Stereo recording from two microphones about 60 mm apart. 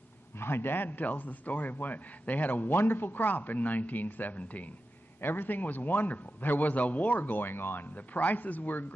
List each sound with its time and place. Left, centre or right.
0.4 s a man's voice: left